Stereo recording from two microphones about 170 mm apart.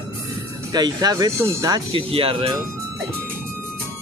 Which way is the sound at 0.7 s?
25° right (ahead or behind).